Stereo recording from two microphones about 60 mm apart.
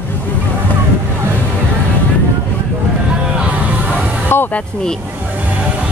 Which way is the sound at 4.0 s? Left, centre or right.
Right.